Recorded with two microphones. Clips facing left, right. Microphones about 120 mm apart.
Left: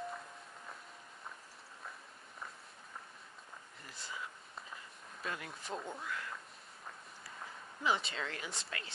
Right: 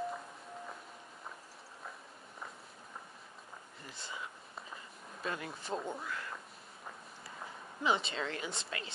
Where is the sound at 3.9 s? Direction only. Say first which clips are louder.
Right 1 dB; 25° right (ahead or behind).